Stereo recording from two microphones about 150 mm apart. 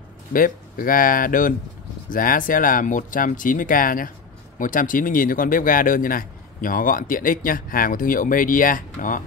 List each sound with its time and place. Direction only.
0.3 s a man's voice: 70° left (ahead or behind)